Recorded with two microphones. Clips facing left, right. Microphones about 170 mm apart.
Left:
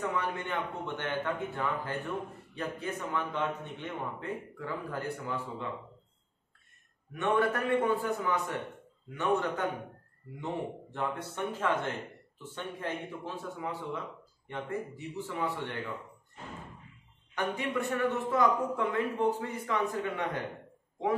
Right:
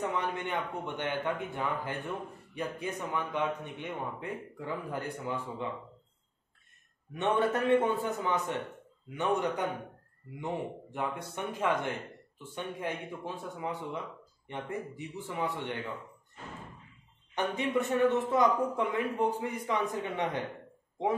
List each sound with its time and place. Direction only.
0.0 s a man's voice: 20° right (ahead or behind)
7.2 s a man's voice: 20° right (ahead or behind)
17.3 s a man's voice: 20° right (ahead or behind)